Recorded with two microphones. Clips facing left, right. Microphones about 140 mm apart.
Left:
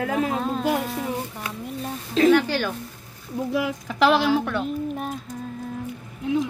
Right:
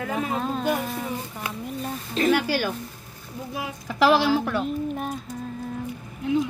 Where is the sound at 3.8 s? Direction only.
Centre (ahead or behind).